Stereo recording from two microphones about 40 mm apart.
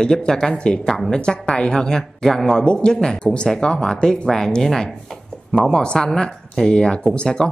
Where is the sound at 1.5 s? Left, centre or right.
Centre.